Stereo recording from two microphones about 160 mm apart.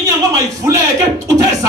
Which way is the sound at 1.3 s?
20° right (ahead or behind).